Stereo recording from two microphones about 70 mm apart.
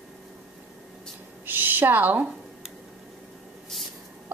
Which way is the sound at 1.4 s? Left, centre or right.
Right.